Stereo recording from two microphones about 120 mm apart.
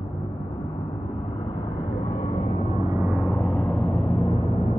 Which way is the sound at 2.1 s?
60° left (ahead or behind).